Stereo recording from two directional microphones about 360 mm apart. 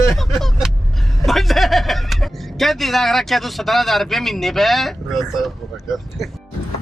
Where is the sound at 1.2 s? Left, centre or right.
Centre.